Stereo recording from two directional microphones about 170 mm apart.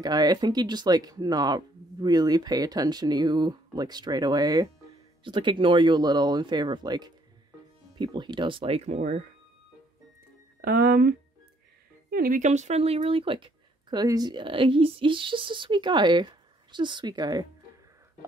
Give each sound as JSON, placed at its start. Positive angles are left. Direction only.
{"t": 0.0, "sound": "speech", "side_deg": -25}
{"t": 10.6, "sound": "speech", "side_deg": -65}